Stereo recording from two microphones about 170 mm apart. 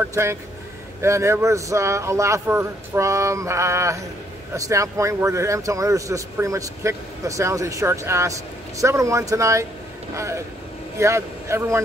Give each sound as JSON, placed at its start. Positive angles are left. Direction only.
{"t": 0.1, "sound": "speech", "side_deg": -15}